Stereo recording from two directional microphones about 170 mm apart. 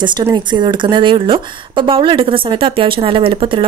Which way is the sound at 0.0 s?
25° right (ahead or behind).